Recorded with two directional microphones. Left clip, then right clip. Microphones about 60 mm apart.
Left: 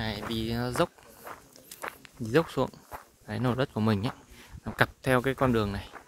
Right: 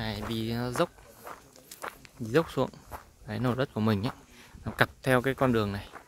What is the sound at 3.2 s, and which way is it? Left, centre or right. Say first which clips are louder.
Speech: left 1 dB; centre.